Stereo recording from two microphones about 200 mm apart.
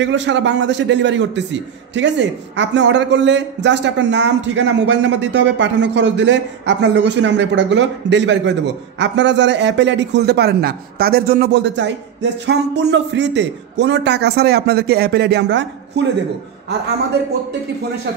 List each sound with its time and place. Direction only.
0.0 s a man's voice: 65° right (ahead or behind)